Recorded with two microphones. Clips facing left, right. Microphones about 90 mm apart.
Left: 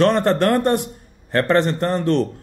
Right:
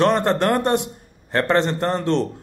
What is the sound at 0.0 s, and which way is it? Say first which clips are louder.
A man's voice: left 2 dB; 20° right (ahead or behind).